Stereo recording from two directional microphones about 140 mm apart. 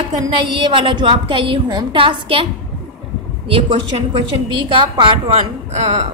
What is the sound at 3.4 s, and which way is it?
A woman's voice, 40° right (ahead or behind).